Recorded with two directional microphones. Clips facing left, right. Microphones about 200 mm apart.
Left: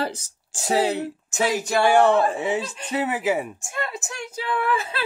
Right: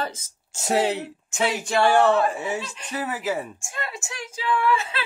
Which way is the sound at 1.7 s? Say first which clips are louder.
Left 1 dB; 10° left (ahead or behind).